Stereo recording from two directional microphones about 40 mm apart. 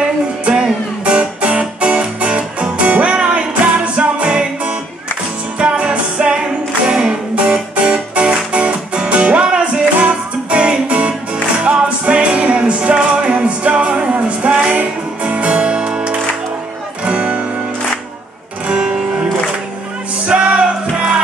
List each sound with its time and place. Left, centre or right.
0.5 s music: right
18.7 s music: right
20.3 s music: right